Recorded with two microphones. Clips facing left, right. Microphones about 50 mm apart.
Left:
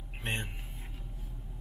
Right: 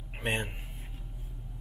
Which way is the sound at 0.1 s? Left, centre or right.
Centre.